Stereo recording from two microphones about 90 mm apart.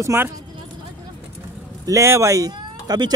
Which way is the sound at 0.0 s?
30° right (ahead or behind).